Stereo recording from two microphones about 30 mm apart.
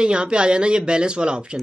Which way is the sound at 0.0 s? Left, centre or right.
Right.